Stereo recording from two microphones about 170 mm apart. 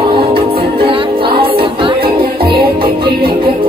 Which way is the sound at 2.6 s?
65° right (ahead or behind).